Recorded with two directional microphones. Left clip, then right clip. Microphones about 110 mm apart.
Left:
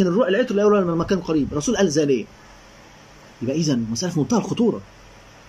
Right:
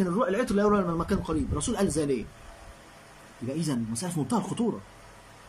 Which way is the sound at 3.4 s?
15° left (ahead or behind).